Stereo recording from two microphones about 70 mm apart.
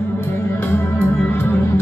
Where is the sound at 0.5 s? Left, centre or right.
Left.